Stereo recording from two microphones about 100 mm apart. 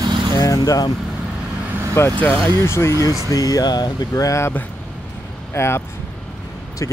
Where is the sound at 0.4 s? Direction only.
35° left (ahead or behind).